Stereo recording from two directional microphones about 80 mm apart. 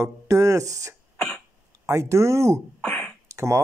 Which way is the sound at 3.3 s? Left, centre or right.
Right.